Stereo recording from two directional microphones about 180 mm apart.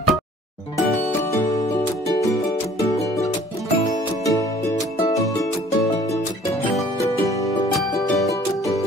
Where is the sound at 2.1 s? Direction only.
20° left (ahead or behind).